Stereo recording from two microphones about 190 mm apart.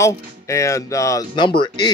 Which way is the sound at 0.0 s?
15° left (ahead or behind).